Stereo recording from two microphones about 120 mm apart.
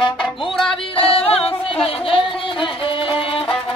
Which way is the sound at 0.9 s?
55° left (ahead or behind).